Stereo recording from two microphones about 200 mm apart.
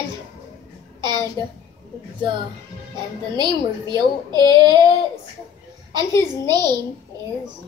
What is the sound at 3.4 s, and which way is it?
A child's voice, 20° right (ahead or behind).